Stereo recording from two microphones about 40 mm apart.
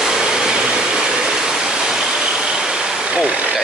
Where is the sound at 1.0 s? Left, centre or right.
Centre.